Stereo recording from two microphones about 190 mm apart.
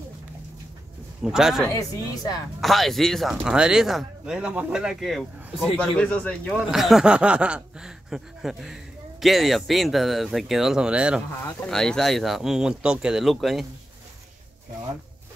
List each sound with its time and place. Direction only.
1.2 s speech: 5° right (ahead or behind)
1.7 s speech: 15° left (ahead or behind)
2.6 s speech: centre (ahead or behind)